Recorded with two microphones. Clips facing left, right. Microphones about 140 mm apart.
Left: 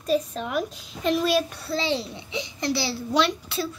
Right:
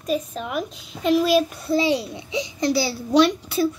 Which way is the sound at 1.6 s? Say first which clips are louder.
Right 7 dB; 15° right (ahead or behind).